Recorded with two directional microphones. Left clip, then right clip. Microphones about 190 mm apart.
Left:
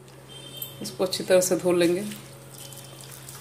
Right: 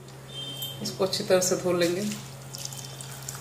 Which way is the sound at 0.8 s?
45° left (ahead or behind).